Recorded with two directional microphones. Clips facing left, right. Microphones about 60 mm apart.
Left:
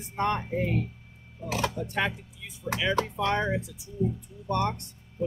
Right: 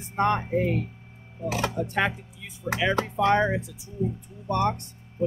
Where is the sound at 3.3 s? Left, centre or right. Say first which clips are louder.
Right 5 dB; right.